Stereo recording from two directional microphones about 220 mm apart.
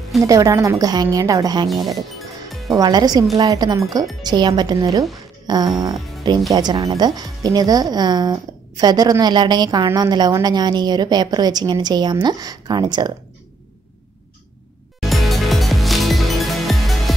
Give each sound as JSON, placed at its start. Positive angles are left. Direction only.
{"t": 0.2, "sound": "a woman's voice", "side_deg": -15}
{"t": 1.7, "sound": "speech", "side_deg": 0}
{"t": 2.7, "sound": "a woman's voice", "side_deg": -15}
{"t": 15.0, "sound": "music", "side_deg": 0}